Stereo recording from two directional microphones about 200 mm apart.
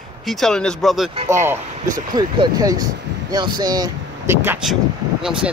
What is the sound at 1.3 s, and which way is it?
Speech, 10° right (ahead or behind).